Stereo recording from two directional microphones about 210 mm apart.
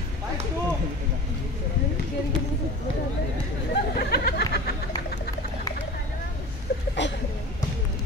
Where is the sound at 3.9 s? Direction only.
50° left (ahead or behind).